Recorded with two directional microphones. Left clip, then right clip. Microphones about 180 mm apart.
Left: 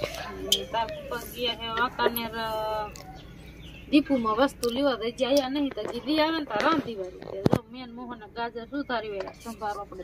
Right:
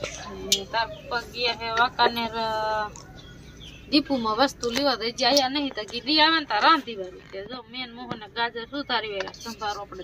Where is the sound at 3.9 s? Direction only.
10° left (ahead or behind).